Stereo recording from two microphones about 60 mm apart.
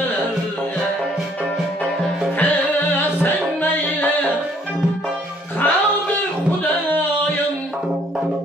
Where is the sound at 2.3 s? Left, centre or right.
Left.